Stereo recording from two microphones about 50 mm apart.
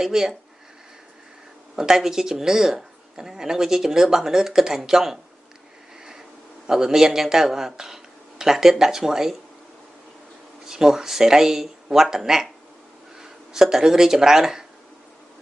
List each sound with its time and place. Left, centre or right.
0.0 s speech: centre
1.8 s speech: centre
6.7 s speech: centre
10.6 s speech: centre